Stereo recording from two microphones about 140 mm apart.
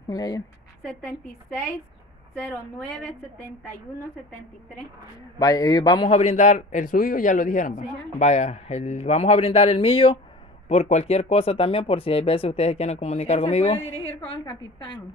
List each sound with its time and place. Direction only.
0.1 s a man's voice: 25° left (ahead or behind)
2.3 s a woman's voice: 15° left (ahead or behind)
5.4 s a man's voice: 25° left (ahead or behind)
6.0 s a man's voice: 50° left (ahead or behind)
10.7 s speech: 50° left (ahead or behind)
14.0 s a woman's voice: 35° left (ahead or behind)